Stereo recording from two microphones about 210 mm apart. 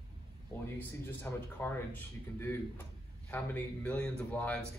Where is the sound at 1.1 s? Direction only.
10° left (ahead or behind).